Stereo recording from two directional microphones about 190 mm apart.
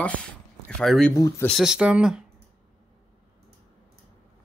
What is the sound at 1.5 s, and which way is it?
Speech, centre (ahead or behind).